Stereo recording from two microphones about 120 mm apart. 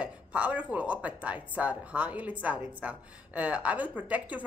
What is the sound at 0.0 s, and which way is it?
A woman's voice, 10° right (ahead or behind).